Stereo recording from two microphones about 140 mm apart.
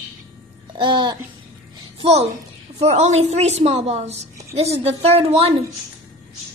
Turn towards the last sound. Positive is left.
turn(degrees=-45)  # may be behind; listen again after turning